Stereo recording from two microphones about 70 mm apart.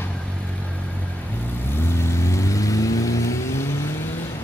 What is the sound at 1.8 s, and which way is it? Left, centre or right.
Vehicle, left.